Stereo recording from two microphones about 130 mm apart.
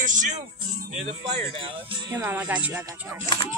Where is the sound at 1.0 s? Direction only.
45° right (ahead or behind).